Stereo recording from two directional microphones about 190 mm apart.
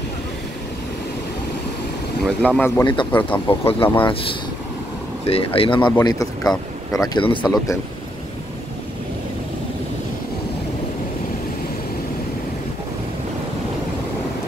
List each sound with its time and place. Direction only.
2.2 s speech: 5° left (ahead or behind)
2.8 s speech: 25° left (ahead or behind)
3.1 s speech: 10° left (ahead or behind)
3.4 s speech: 30° left (ahead or behind)